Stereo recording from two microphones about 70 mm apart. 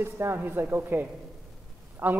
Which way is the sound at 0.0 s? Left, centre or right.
Right.